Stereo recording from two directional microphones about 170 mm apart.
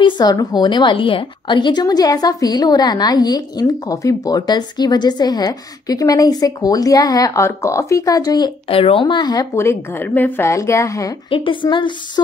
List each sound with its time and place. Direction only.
0.0 s a woman's voice: 25° left (ahead or behind)
11.2 s a woman's voice: 30° left (ahead or behind)